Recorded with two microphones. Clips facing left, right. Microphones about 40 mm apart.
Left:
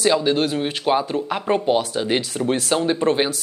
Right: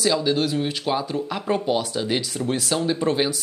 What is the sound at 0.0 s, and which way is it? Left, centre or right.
Speech, left.